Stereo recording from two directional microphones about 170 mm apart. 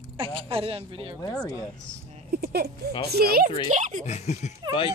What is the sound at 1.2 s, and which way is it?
Speech, 20° left (ahead or behind).